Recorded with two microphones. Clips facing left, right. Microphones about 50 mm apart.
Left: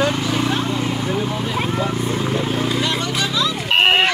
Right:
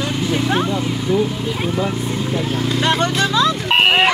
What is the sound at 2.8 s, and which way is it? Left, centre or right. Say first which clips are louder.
Speech: right 4 dB; right.